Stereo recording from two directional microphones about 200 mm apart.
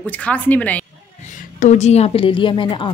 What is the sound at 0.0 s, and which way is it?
Speech, 10° left (ahead or behind).